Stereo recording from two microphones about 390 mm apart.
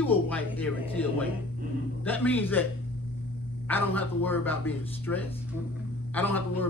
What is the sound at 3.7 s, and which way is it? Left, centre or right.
A man's voice, centre.